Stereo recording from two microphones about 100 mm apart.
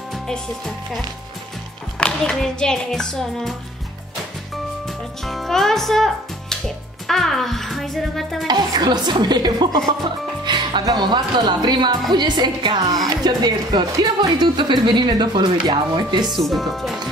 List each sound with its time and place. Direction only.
0.1 s a child's voice: centre (ahead or behind)
4.8 s a child's voice: centre (ahead or behind)
8.5 s a woman's voice: 45° right (ahead or behind)
16.3 s a child's voice: centre (ahead or behind)